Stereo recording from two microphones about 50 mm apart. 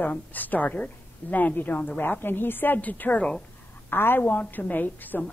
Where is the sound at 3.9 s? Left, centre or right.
Left.